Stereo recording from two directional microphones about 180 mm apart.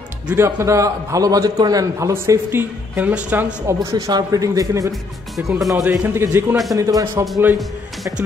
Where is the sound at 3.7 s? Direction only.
20° right (ahead or behind).